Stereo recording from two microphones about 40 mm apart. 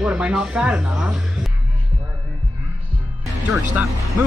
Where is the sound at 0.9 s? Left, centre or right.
Centre.